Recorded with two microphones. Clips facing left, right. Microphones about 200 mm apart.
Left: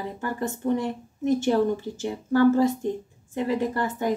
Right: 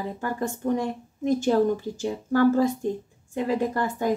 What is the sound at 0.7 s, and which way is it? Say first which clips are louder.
Speech: even; 15° right (ahead or behind).